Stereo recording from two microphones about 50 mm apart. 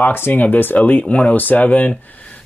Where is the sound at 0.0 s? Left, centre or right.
Left.